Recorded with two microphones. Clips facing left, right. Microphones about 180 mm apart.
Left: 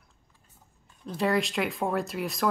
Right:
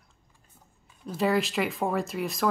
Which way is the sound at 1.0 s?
5° right (ahead or behind).